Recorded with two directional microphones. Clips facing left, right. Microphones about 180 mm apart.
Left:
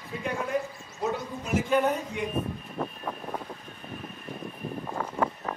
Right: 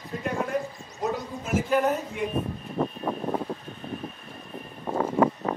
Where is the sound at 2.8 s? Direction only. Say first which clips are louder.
Right 8 dB; 35° right (ahead or behind).